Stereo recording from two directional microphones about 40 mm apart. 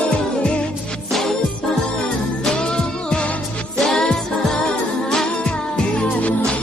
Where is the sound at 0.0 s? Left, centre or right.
Left.